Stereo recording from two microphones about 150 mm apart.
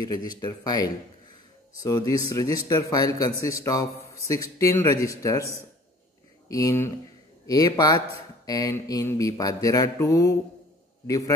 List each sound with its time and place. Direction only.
0.4 s a man's voice: 25° left (ahead or behind)
6.5 s a man's voice: 20° left (ahead or behind)